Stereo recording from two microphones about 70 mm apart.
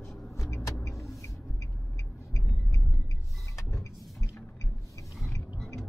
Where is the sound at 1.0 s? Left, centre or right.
Left.